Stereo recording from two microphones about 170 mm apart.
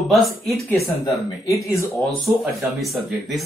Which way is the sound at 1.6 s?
15° left (ahead or behind).